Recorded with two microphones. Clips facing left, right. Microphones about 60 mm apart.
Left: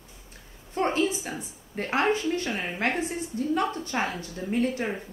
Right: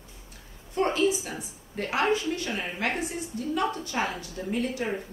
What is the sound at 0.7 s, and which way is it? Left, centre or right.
A woman's voice, left.